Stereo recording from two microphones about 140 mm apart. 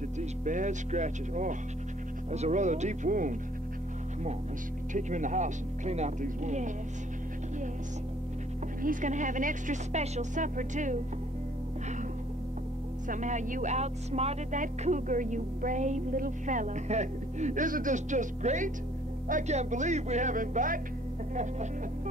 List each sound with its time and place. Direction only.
0.2 s speech: 60° right (ahead or behind)
4.9 s speech: 65° right (ahead or behind)
8.8 s speech: 65° right (ahead or behind)
13.1 s speech: 65° right (ahead or behind)
14.6 s speech: 65° right (ahead or behind)